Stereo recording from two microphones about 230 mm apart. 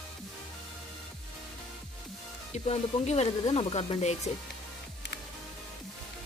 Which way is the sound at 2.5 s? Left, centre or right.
Left.